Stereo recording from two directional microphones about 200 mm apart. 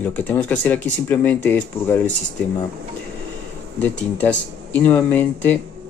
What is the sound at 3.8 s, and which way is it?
Speech, 10° left (ahead or behind).